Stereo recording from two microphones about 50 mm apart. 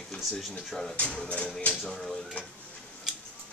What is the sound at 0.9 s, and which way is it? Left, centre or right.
Speech, left.